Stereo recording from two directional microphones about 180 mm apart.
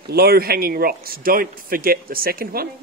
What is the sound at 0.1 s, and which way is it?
A man's voice, 60° right (ahead or behind).